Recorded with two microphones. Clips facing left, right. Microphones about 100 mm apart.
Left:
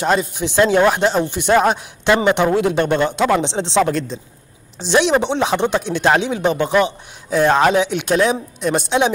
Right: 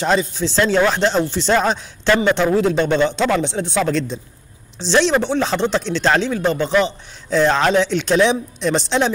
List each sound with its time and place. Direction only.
0.0 s speech: 10° left (ahead or behind)
3.4 s speech: 25° left (ahead or behind)
4.1 s a man's voice: centre (ahead or behind)
4.7 s speech: 15° left (ahead or behind)